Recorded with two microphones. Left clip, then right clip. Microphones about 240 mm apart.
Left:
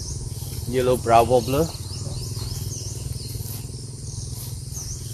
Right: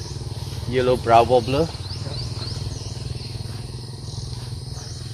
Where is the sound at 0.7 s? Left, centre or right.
Centre.